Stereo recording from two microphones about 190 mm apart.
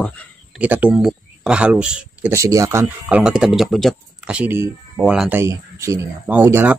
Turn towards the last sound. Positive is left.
turn(degrees=-10)  # may be behind; listen again after turning